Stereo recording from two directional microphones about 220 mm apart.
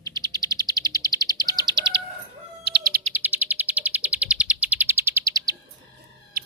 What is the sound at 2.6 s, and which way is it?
Bird, 45° right (ahead or behind).